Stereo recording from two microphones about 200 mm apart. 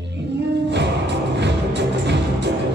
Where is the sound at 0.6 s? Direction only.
60° right (ahead or behind).